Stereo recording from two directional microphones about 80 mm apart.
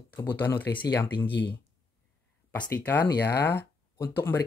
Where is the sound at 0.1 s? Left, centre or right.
Left.